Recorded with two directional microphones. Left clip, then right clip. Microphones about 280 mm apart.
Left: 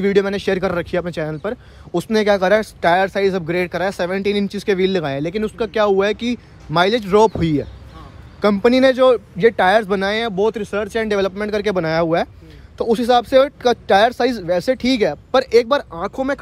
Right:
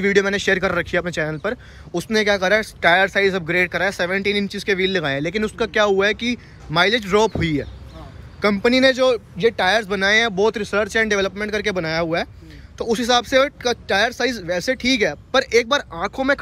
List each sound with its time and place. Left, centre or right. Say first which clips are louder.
0.0 s speech: left 1 dB; centre
1.9 s speech: left 3 dB; left
8.4 s speech: left 2 dB; centre